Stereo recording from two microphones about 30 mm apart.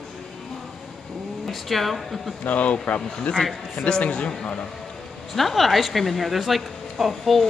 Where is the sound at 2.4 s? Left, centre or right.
Left.